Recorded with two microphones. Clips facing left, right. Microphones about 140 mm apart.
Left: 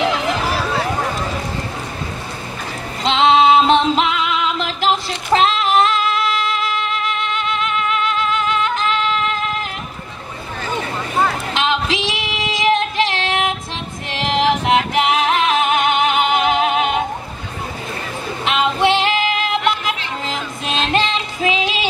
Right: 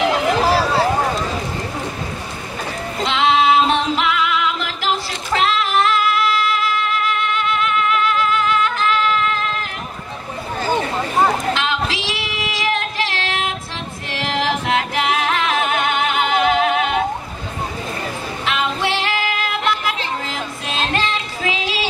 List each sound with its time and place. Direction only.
3.1 s music: 25° left (ahead or behind)
10.6 s a sound: 30° right (ahead or behind)
11.5 s female singing: 20° left (ahead or behind)
14.1 s singing: 20° left (ahead or behind)
18.4 s music: 20° left (ahead or behind)